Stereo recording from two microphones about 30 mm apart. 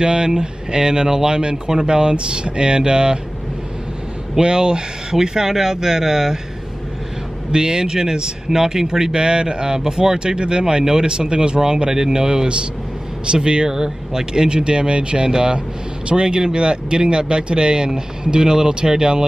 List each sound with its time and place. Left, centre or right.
0.0 s speech: right
4.4 s speech: right
7.5 s speech: right
9.1 s speech: right
13.3 s speech: right
13.7 s speech: centre